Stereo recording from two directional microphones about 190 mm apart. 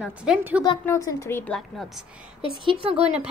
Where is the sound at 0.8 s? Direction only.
15° left (ahead or behind).